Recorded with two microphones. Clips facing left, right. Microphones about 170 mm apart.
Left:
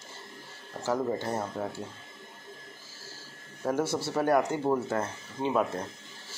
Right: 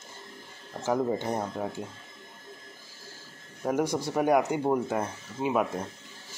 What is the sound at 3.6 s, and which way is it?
Speech, 15° right (ahead or behind).